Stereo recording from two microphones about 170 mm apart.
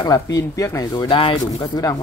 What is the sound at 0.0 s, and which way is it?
Speech, 20° left (ahead or behind).